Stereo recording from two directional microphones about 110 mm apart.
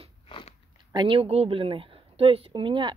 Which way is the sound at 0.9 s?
55° right (ahead or behind).